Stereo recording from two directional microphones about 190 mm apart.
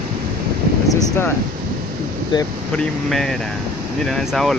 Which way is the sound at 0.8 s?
15° left (ahead or behind).